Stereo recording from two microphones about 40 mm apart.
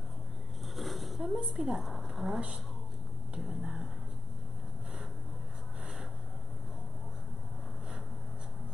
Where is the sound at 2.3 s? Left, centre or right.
Right.